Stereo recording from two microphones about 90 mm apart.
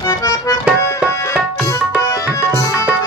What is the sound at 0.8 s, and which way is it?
Tabla, 30° left (ahead or behind).